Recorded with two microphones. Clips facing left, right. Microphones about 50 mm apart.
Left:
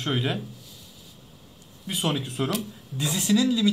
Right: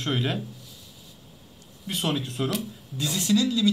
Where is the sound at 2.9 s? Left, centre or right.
Centre.